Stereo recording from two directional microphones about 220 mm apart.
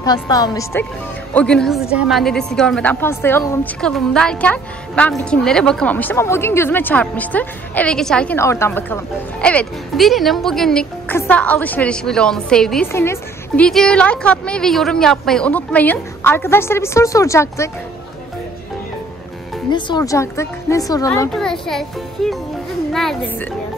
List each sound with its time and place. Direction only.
0.0 s a woman's voice: 15° left (ahead or behind)
1.3 s a woman's voice: 5° left (ahead or behind)
19.7 s a woman's voice: 20° left (ahead or behind)
21.3 s a woman's voice: centre (ahead or behind)